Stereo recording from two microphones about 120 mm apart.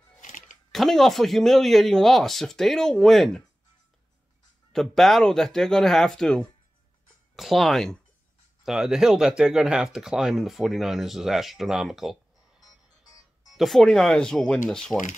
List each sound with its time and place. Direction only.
0.2 s a sound: 90° left
0.7 s speech: centre (ahead or behind)
4.7 s speech: centre (ahead or behind)
13.0 s music: 30° left (ahead or behind)
13.6 s speech: centre (ahead or behind)